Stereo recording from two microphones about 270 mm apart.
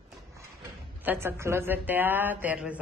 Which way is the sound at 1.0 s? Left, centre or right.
Centre.